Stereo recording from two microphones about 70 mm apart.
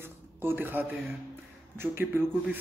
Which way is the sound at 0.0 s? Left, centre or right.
Right.